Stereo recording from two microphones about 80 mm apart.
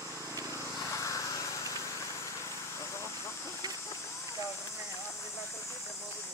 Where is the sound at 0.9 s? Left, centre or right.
Left.